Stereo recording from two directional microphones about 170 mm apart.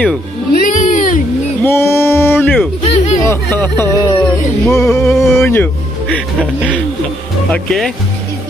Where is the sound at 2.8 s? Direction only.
40° left (ahead or behind).